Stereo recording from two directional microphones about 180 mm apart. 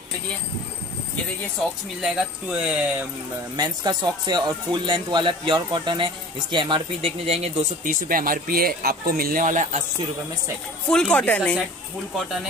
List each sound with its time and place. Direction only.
2.0 s speech: centre (ahead or behind)
3.5 s speech: 20° right (ahead or behind); by 9.8 s 40° right (ahead or behind)
10.9 s speech: 5° left (ahead or behind)